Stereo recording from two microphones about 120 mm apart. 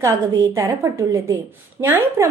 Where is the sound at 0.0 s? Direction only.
25° right (ahead or behind).